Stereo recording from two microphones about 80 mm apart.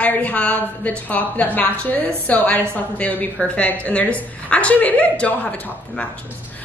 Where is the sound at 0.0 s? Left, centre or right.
Centre.